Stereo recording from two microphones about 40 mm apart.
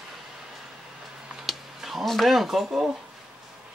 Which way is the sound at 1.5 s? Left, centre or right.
Centre.